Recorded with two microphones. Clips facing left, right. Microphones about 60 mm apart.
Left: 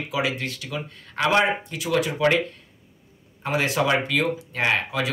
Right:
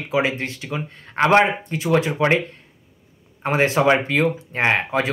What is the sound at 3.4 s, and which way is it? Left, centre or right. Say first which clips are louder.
Speech: right 5 dB; right.